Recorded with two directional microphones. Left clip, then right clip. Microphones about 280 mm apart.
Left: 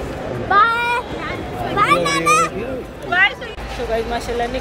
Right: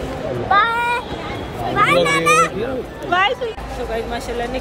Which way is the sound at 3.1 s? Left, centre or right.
Right.